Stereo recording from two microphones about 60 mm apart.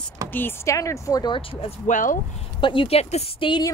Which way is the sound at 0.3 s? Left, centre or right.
Left.